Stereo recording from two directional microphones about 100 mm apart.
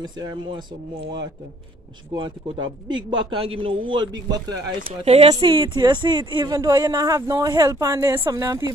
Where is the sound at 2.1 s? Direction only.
50° right (ahead or behind).